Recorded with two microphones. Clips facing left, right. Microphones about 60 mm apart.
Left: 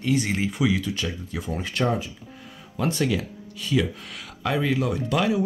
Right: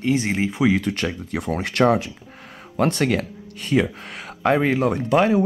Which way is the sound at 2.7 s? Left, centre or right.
Right.